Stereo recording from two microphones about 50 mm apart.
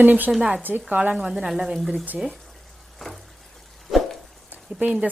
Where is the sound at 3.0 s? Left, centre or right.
Centre.